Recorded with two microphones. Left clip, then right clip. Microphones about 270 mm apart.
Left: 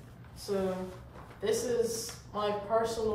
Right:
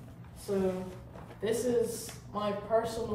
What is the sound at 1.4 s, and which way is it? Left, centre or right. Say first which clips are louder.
Speech: even; centre.